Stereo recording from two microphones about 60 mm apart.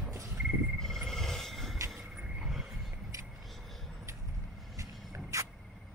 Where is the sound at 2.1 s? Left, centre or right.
Centre.